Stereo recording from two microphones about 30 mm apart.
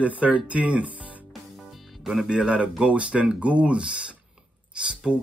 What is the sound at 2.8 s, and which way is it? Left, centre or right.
A man's voice, right.